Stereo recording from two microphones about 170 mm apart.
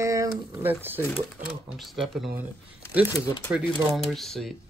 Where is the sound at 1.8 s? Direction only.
Centre (ahead or behind).